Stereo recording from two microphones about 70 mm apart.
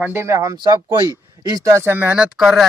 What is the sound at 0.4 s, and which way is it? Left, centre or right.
Speech, right.